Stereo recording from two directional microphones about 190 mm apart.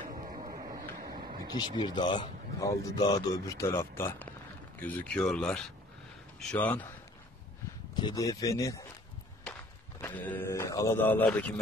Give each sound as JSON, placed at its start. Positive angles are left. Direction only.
{"t": 0.2, "sound": "a sound", "side_deg": -40}
{"t": 1.5, "sound": "speech", "side_deg": 25}
{"t": 7.9, "sound": "speech", "side_deg": 20}
{"t": 10.0, "sound": "speech", "side_deg": 10}